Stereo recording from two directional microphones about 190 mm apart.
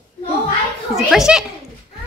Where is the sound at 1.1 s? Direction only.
5° right (ahead or behind).